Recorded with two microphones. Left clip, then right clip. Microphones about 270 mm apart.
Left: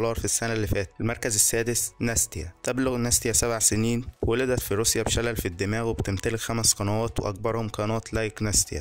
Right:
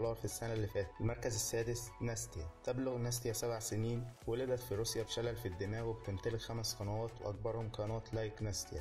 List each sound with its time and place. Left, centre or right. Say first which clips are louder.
0.0 s speech: left 13 dB; left